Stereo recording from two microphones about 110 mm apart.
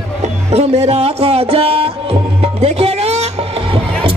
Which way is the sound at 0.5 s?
75° right (ahead or behind).